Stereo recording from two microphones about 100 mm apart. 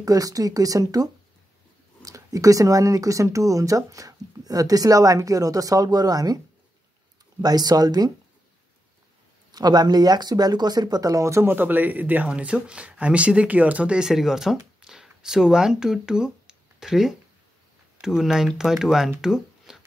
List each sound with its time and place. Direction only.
0.0 s speech: 35° right (ahead or behind)
7.4 s speech: 40° right (ahead or behind)
9.5 s speech: 45° right (ahead or behind); by 19.0 s 5° right (ahead or behind)
19.2 s a sound: 5° right (ahead or behind)